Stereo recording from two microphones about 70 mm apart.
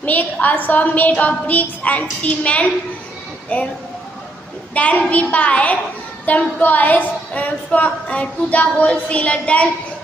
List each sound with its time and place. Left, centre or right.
0.0 s a woman's voice: left
4.7 s a woman's voice: centre